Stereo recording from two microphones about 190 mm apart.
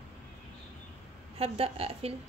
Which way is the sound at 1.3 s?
30° right (ahead or behind).